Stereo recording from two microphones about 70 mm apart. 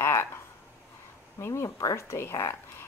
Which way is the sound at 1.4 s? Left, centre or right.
Left.